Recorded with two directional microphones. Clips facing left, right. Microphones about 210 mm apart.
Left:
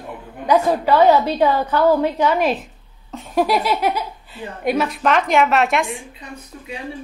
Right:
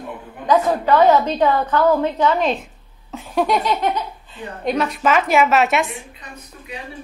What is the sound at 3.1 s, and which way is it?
Speech, centre (ahead or behind).